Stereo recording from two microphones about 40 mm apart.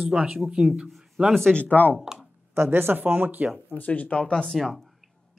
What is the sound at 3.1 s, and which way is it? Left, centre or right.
Speech, right.